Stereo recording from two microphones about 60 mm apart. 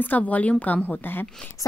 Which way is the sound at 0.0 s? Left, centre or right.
Left.